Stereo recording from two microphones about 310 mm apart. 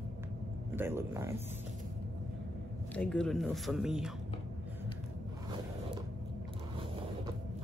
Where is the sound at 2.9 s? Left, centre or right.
Centre.